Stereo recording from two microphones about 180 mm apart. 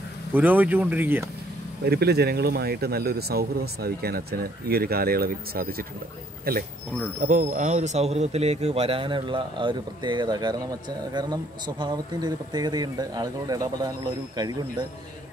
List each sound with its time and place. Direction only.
0.3 s speech: 10° right (ahead or behind)
1.9 s speech: 65° right (ahead or behind); by 14.9 s 20° right (ahead or behind)